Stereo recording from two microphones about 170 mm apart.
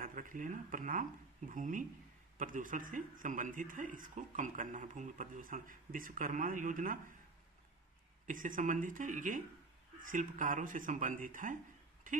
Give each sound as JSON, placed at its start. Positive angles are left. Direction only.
{"t": 0.0, "sound": "a man's voice", "side_deg": -50}
{"t": 8.3, "sound": "a man's voice", "side_deg": -50}